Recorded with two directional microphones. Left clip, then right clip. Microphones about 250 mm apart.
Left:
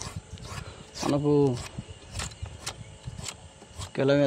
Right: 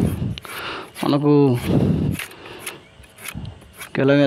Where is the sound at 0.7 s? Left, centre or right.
Right.